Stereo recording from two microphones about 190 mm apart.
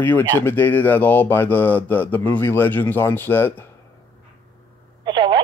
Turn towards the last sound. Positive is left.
turn(degrees=-25)  # may be behind; listen again after turning